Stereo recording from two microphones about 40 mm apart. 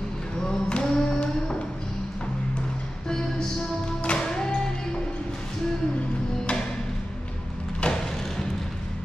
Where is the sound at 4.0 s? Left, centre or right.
Left.